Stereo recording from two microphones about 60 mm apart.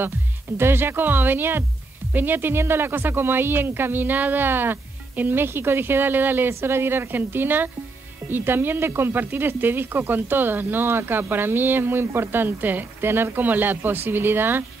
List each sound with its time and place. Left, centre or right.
0.6 s speech: right